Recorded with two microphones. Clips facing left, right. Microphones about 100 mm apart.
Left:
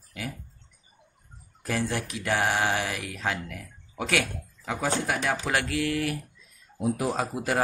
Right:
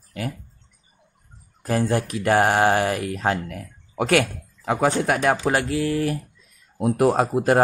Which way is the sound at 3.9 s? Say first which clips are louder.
Right 8 dB; 55° right (ahead or behind).